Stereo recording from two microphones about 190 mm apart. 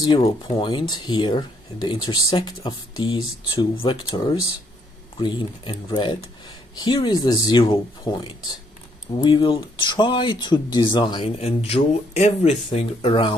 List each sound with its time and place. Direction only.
0.2 s speech: 25° left (ahead or behind)